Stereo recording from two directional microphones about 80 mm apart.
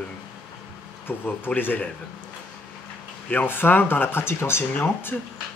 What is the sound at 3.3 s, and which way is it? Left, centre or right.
Speech, left.